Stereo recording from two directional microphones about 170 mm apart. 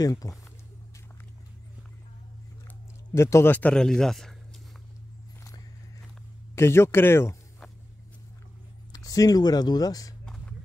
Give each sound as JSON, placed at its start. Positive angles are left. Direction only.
{"t": 0.0, "sound": "speech", "side_deg": 20}
{"t": 3.1, "sound": "a man's voice", "side_deg": 15}
{"t": 6.5, "sound": "a man's voice", "side_deg": 15}
{"t": 8.9, "sound": "speech", "side_deg": 20}
{"t": 10.2, "sound": "a sound", "side_deg": 5}